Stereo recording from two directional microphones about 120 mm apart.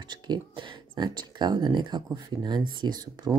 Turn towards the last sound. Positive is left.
turn(degrees=-35)  # may be behind; listen again after turning